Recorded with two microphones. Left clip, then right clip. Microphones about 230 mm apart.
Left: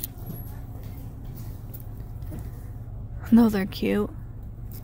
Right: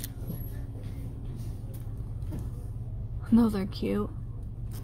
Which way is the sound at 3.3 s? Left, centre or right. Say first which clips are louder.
Left 5 dB; centre.